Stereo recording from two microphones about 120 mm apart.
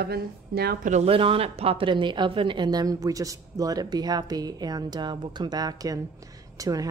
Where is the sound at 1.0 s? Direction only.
50° right (ahead or behind).